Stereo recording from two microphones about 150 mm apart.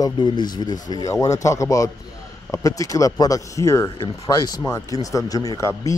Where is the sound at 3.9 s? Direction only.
35° left (ahead or behind).